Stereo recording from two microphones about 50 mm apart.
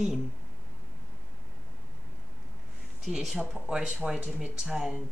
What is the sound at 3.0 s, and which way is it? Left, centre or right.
Speech, centre.